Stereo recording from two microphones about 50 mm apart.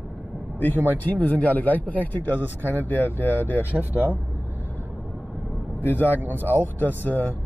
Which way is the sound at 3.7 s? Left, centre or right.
Right.